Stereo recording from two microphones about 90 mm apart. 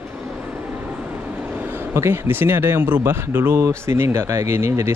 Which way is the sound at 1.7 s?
30° right (ahead or behind).